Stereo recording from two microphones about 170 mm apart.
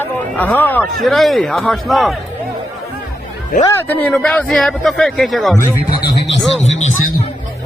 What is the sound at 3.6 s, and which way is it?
A man's voice, 15° left (ahead or behind).